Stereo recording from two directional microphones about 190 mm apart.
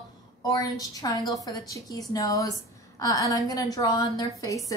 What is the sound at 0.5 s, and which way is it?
A woman's voice, 20° left (ahead or behind).